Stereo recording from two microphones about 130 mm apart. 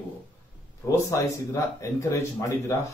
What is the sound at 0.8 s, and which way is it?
Speech, 25° left (ahead or behind).